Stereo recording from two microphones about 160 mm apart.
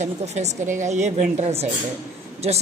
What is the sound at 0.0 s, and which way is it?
A woman's voice, 45° right (ahead or behind).